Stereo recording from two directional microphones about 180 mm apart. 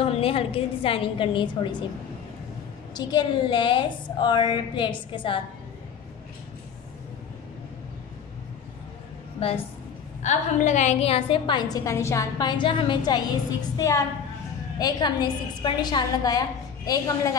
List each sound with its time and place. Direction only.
0.0 s a woman's voice: 30° left (ahead or behind)
2.9 s a woman's voice: 25° left (ahead or behind)
9.4 s a woman's voice: 30° left (ahead or behind)